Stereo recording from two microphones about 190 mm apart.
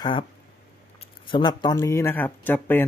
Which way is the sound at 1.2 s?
25° left (ahead or behind).